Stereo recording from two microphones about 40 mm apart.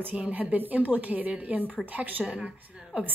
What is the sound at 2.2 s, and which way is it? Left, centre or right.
Speech, right.